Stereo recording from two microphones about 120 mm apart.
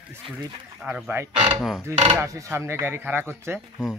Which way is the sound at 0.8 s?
10° right (ahead or behind).